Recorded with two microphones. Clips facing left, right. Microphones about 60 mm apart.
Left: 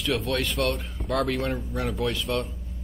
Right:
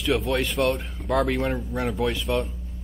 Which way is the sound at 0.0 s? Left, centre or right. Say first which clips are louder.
Right 3 dB; centre.